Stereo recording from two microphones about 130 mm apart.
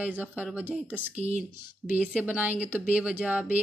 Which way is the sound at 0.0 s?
10° right (ahead or behind).